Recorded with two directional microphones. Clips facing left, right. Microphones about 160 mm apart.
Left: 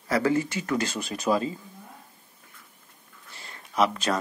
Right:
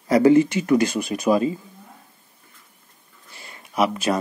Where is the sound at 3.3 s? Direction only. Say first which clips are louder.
Right 2 dB; 10° right (ahead or behind).